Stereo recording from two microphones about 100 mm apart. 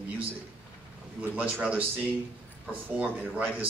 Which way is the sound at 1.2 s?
15° right (ahead or behind).